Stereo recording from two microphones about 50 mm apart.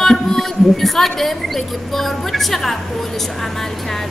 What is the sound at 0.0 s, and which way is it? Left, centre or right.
A woman's voice, centre.